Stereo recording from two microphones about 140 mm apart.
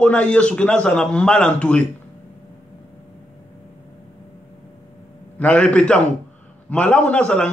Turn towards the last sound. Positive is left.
turn(degrees=5)  # may be behind; listen again after turning